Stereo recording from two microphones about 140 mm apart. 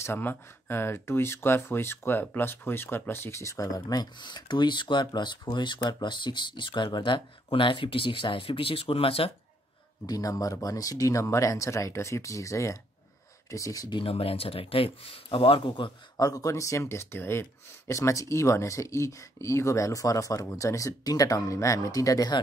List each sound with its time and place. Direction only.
0.0 s speech: 15° left (ahead or behind); by 9.3 s 40° left (ahead or behind)
10.0 s speech: 25° left (ahead or behind)